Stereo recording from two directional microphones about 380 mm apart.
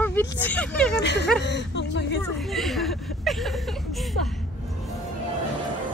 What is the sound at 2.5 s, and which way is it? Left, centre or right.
A woman's voice, centre.